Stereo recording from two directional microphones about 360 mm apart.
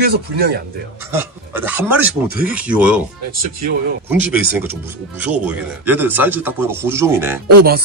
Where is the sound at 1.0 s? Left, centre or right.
Centre.